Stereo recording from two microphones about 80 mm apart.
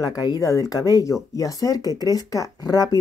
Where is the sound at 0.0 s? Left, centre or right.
Left.